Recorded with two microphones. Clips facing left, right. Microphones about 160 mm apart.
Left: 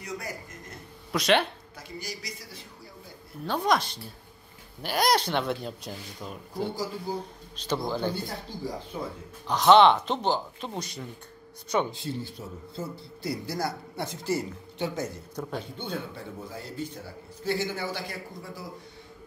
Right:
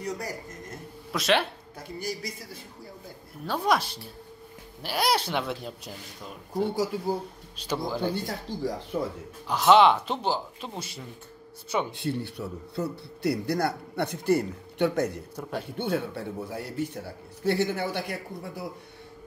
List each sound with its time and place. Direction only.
1.1 s speech: centre (ahead or behind)
1.8 s a man's voice: 55° right (ahead or behind)
3.4 s speech: 5° right (ahead or behind)
6.7 s speech: 70° right (ahead or behind)
7.5 s speech: 10° right (ahead or behind)
8.1 s speech: 90° right
9.5 s speech: 5° right (ahead or behind)
11.9 s a man's voice: 65° right (ahead or behind)
15.4 s speech: 5° right (ahead or behind)
15.8 s a man's voice: 75° right (ahead or behind)